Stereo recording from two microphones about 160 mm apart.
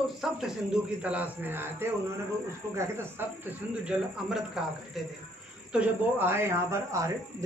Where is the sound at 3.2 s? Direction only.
15° right (ahead or behind).